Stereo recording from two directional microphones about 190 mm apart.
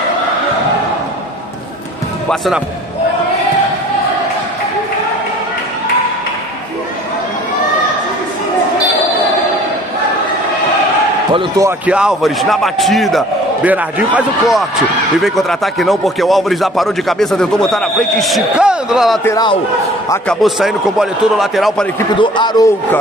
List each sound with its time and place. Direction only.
2.2 s speech: centre (ahead or behind)
11.6 s speech: 5° right (ahead or behind)
19.2 s a man's voice: 20° left (ahead or behind)
20.2 s speech: centre (ahead or behind)
22.2 s a man's voice: 25° left (ahead or behind)